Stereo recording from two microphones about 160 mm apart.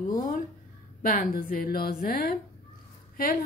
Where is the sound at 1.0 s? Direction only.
65° left (ahead or behind).